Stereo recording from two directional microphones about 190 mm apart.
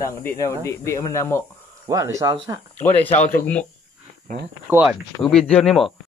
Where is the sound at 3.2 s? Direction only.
50° left (ahead or behind).